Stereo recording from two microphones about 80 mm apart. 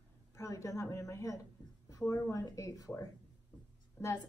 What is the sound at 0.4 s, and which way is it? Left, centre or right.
A woman's voice, left.